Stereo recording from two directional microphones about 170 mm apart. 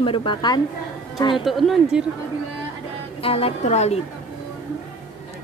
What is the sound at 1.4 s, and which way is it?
Speech, centre (ahead or behind).